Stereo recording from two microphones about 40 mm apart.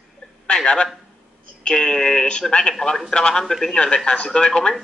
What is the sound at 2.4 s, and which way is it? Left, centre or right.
Speech, centre.